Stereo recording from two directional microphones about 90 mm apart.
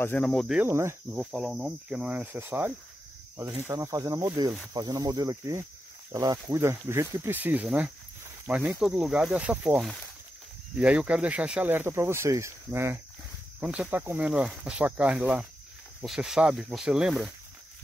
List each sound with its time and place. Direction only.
0.2 s speech: 5° left (ahead or behind)
0.6 s speech: 30° right (ahead or behind)
1.1 s speech: 5° right (ahead or behind); by 2.7 s 20° right (ahead or behind)
3.3 s speech: 35° right (ahead or behind)
6.5 s speech: 30° right (ahead or behind)
9.8 s speech: 5° left (ahead or behind)
10.8 s speech: 15° right (ahead or behind); by 13.0 s 30° right (ahead or behind)
13.6 s speech: 15° right (ahead or behind)
16.0 s speech: 5° right (ahead or behind)